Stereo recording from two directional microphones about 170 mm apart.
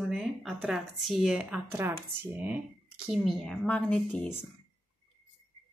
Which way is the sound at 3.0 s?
Centre (ahead or behind).